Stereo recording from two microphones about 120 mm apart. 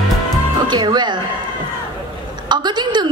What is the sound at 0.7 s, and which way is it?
Music, 40° right (ahead or behind).